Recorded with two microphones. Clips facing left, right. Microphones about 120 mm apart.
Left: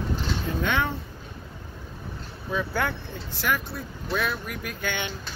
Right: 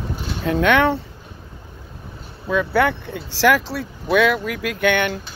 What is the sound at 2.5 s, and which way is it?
Speech, 80° right.